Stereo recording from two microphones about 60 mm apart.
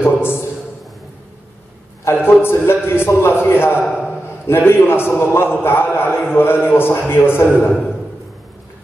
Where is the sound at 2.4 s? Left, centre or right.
Left.